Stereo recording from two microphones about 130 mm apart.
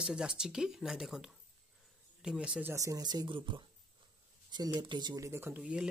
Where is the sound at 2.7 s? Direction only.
25° right (ahead or behind).